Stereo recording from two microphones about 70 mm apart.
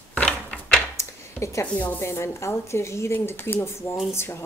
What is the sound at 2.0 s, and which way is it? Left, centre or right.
A woman's voice, left.